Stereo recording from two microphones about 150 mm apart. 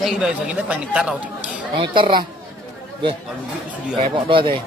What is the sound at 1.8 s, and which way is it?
Speech, 35° right (ahead or behind).